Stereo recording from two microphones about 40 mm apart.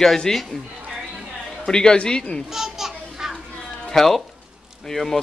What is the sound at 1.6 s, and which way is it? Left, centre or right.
Speech, centre.